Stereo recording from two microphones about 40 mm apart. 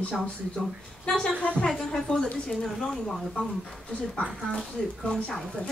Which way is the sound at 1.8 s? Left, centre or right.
Centre.